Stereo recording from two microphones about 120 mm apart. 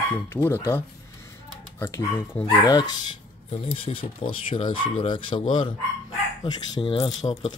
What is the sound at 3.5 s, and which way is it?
Speech, 50° left (ahead or behind).